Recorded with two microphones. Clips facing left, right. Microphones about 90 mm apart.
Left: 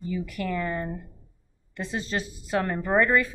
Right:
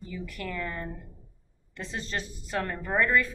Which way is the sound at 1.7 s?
10° left (ahead or behind).